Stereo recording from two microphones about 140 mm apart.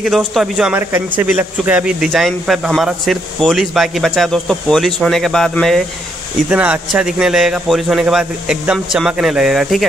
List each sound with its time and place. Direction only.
0.0 s speech: centre (ahead or behind)
6.5 s speech: 10° right (ahead or behind)